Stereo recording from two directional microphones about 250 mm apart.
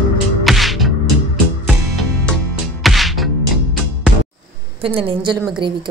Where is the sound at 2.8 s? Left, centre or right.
Centre.